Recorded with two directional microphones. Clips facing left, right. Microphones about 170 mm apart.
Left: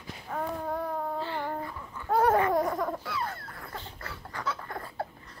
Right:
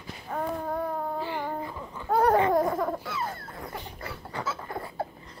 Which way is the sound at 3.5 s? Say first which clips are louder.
Right 4 dB; 15° right (ahead or behind).